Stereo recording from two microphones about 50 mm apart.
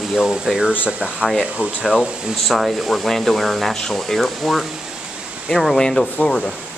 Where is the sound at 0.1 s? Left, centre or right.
Centre; by 1.8 s right.